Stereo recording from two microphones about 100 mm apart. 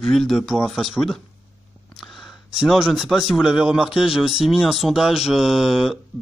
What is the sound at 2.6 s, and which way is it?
A man's voice, 5° right (ahead or behind).